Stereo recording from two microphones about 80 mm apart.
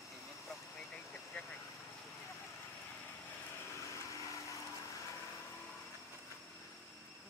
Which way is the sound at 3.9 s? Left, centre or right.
Left.